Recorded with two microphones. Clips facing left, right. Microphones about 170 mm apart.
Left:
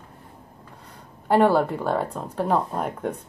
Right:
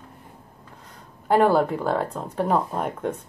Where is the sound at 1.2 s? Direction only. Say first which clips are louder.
Even; centre (ahead or behind).